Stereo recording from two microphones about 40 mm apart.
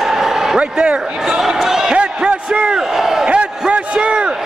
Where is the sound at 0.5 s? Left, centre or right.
Right.